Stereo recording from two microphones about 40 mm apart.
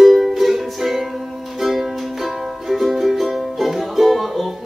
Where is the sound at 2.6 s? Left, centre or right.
Centre.